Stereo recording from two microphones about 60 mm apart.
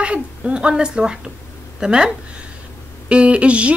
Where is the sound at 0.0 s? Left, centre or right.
Centre.